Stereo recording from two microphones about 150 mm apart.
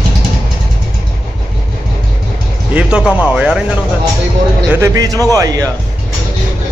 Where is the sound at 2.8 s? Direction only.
5° right (ahead or behind).